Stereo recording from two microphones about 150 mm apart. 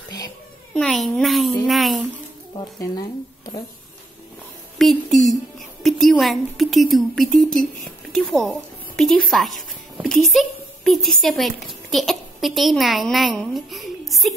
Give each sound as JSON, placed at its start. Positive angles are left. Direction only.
{"t": 0.7, "sound": "a woman's voice", "side_deg": 0}
{"t": 2.8, "sound": "speech", "side_deg": 25}
{"t": 4.7, "sound": "a woman's voice", "side_deg": 0}